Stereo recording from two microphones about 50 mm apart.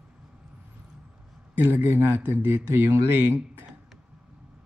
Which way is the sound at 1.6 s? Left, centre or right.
Right.